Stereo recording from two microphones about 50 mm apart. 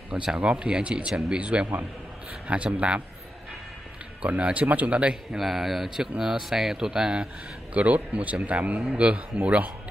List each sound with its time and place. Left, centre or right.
0.4 s speech: right
4.2 s speech: right
5.3 s speech: centre
7.7 s speech: right